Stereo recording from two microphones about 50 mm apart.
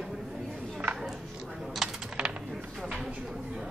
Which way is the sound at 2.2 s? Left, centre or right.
Centre.